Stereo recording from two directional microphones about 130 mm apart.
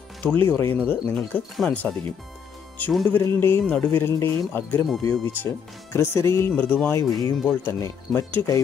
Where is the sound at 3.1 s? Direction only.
15° left (ahead or behind).